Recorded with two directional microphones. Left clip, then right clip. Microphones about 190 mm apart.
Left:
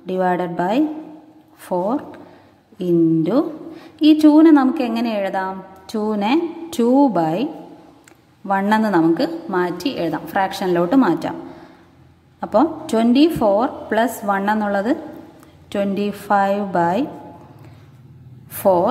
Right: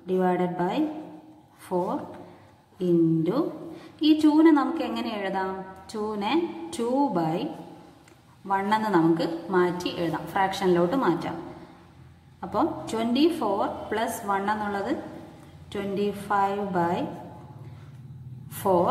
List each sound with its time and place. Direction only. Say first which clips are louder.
0.0 s a woman's voice: left 5 dB; 40° left (ahead or behind)
8.5 s a woman's voice: left 7 dB; 35° left (ahead or behind)
12.4 s a woman's voice: left 9 dB; 35° left (ahead or behind)
18.6 s a woman's voice: left 7 dB; 35° left (ahead or behind)